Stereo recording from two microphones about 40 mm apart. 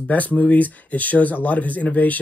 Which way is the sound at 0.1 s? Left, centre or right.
Left.